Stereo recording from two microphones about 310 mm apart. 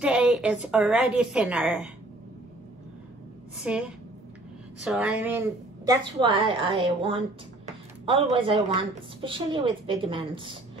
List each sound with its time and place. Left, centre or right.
0.0 s a woman's voice: centre
3.6 s a woman's voice: centre